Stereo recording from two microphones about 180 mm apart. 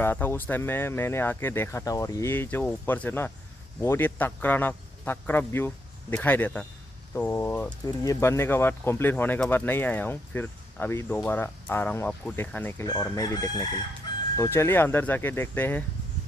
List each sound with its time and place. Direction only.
0.0 s speech: 10° left (ahead or behind)
12.8 s chicken: 20° left (ahead or behind)
14.3 s speech: 15° left (ahead or behind)